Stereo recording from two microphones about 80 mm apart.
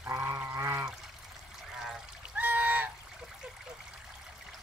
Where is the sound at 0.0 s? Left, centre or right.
Right.